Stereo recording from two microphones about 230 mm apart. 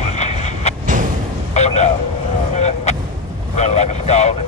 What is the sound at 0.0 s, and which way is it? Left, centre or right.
Vehicle, left.